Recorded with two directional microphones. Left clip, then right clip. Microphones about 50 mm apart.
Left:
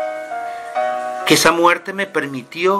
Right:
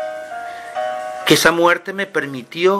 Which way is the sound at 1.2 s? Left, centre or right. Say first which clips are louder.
Even; centre.